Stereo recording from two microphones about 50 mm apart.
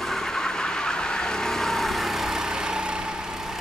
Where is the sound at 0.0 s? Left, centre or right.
Centre.